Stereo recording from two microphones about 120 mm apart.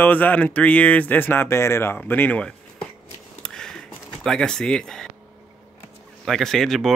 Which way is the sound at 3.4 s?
5° left (ahead or behind).